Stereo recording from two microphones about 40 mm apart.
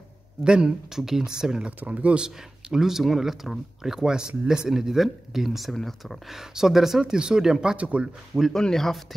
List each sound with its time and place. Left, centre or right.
0.4 s speech: centre
1.8 s speech: right
2.2 s speech: centre
6.2 s speech: centre
7.0 s speech: centre
7.7 s speech: right
8.5 s speech: centre